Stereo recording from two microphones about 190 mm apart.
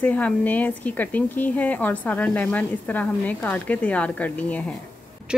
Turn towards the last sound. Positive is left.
turn(degrees=10)  # may be behind; listen again after turning